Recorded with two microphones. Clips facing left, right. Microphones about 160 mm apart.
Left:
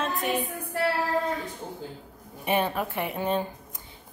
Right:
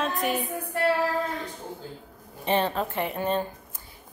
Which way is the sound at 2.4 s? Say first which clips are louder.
Right 1 dB; 10° left (ahead or behind).